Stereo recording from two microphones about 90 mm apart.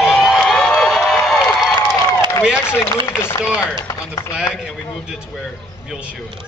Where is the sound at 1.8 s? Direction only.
40° left (ahead or behind).